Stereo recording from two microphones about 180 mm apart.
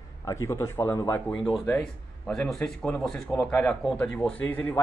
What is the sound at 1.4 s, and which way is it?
Speech, centre (ahead or behind).